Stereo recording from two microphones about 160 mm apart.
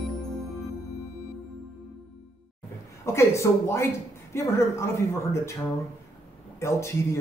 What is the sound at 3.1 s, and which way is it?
Speech, 15° left (ahead or behind).